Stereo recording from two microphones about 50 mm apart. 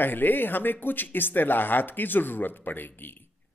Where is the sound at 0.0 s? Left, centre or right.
Left.